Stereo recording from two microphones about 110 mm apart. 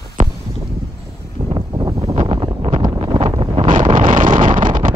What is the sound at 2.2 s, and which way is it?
Wind noise, 55° right (ahead or behind).